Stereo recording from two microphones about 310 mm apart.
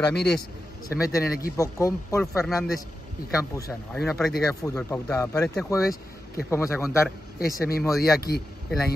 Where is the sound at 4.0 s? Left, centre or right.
Centre.